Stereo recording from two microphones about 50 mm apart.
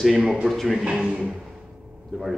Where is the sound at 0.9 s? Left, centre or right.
Centre.